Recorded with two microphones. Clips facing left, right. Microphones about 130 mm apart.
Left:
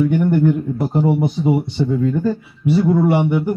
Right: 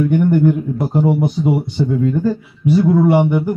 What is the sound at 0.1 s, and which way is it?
A man's voice, centre (ahead or behind).